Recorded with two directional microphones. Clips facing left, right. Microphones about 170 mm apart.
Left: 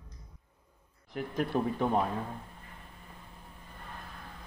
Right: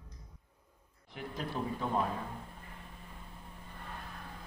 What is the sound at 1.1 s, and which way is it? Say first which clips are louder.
Speech: left 8 dB; 55° left (ahead or behind).